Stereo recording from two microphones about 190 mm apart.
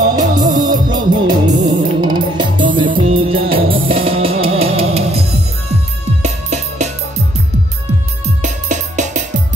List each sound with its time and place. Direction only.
0.4 s music: 20° right (ahead or behind)
8.4 s music: 40° right (ahead or behind)